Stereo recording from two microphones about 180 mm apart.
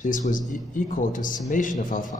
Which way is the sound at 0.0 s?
45° left (ahead or behind).